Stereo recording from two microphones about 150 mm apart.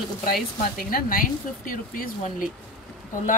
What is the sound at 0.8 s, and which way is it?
Speech, 70° left (ahead or behind).